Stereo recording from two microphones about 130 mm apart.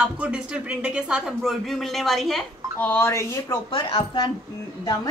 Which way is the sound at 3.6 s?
35° left (ahead or behind).